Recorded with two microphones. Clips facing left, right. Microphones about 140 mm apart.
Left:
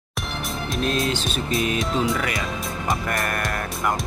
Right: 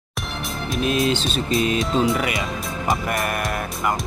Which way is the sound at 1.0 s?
25° right (ahead or behind).